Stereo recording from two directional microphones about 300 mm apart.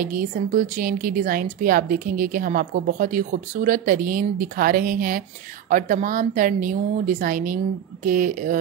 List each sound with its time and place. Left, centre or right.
0.0 s a woman's voice: right